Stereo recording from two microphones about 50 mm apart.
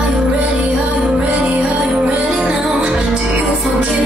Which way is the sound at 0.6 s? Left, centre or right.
Right.